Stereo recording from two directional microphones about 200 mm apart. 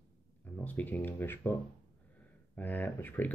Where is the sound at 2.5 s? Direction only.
10° left (ahead or behind).